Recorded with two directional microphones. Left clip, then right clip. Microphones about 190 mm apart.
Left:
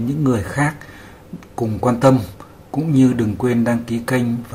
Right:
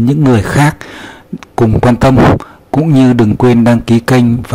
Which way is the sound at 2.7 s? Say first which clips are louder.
Right 8 dB; 50° right (ahead or behind).